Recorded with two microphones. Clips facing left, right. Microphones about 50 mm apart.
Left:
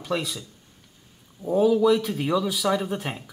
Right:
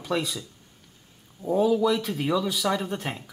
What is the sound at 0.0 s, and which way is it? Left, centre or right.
Speech, centre.